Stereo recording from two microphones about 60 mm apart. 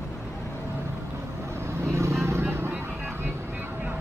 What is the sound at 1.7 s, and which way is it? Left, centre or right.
Vehicle, right.